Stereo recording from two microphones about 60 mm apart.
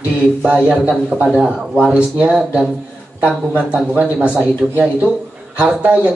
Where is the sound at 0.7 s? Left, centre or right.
Centre.